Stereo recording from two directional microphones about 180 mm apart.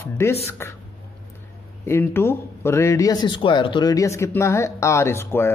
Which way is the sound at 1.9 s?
15° left (ahead or behind).